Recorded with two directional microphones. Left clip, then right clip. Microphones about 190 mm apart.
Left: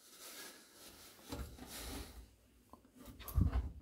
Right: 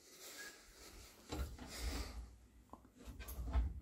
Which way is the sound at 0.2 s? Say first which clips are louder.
Even; 20° left (ahead or behind).